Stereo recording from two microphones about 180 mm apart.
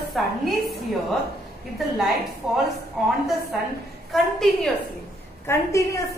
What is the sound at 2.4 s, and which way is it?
Speech, centre (ahead or behind).